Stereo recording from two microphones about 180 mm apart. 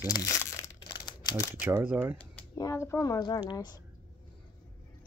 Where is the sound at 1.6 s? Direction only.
10° right (ahead or behind).